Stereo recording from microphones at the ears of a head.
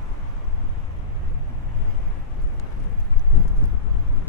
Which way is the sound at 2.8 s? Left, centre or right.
Left.